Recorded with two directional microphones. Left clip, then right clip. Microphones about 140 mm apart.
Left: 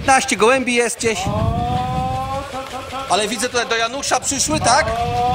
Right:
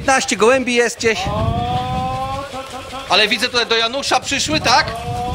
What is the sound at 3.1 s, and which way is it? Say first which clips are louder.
Speech: right 5 dB; 20° left (ahead or behind).